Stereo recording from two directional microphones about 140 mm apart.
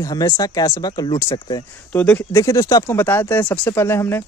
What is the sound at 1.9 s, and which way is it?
Speech, 15° left (ahead or behind).